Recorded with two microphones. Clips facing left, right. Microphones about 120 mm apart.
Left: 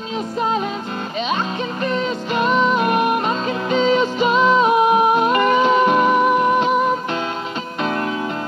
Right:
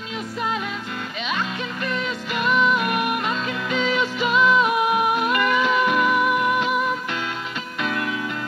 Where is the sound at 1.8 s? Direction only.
30° left (ahead or behind).